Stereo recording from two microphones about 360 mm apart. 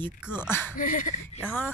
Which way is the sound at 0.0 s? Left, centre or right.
Centre.